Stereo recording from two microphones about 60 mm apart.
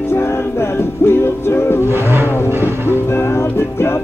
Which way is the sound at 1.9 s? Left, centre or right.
Right.